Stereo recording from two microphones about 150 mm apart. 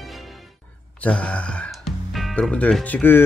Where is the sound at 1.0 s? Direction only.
10° left (ahead or behind).